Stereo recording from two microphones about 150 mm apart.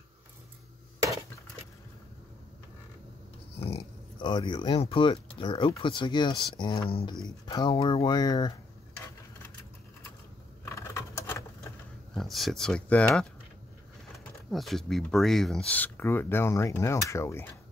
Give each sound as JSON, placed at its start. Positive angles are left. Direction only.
{"t": 3.5, "sound": "speech", "side_deg": 40}
{"t": 7.7, "sound": "speech", "side_deg": 40}
{"t": 10.6, "sound": "patter", "side_deg": 20}
{"t": 12.1, "sound": "speech", "side_deg": 0}